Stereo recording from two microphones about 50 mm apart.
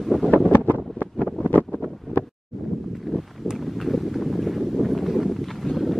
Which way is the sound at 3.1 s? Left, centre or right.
Centre.